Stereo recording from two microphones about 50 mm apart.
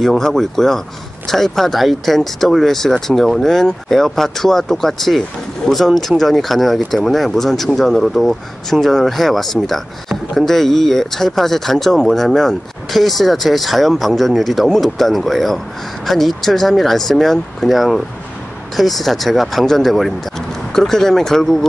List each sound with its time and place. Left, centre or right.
0.0 s speech: centre